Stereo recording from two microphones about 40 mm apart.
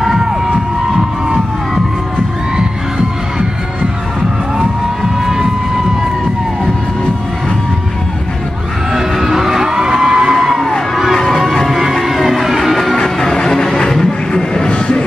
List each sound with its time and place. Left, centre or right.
5.2 s a sound: centre
9.3 s music: centre
10.3 s music: centre
12.9 s music: centre